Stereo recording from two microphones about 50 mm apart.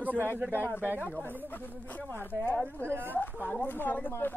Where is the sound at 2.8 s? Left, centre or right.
Right.